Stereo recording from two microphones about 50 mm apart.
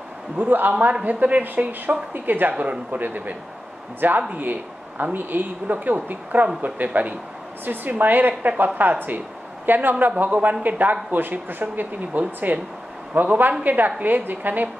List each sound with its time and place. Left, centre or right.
0.4 s speech: right